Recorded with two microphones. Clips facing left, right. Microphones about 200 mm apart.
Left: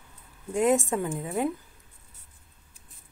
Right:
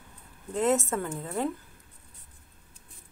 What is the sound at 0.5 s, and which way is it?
A woman's voice, 15° left (ahead or behind).